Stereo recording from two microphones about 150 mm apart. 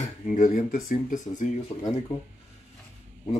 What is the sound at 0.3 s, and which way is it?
Speech, 60° left (ahead or behind).